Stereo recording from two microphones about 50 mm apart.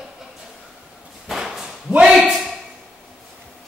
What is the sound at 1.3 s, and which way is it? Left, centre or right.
Whip, centre.